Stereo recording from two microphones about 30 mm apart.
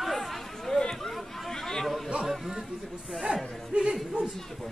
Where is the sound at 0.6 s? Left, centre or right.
Centre.